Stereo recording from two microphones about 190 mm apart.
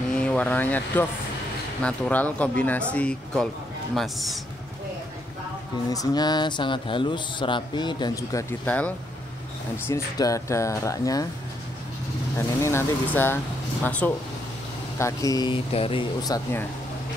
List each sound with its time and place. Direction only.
0.1 s a man's voice: 5° left (ahead or behind)
5.9 s speech: 20° left (ahead or behind)
12.4 s speech: 15° left (ahead or behind)